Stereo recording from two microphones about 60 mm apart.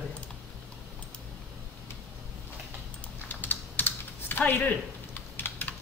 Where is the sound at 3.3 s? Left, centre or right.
Left.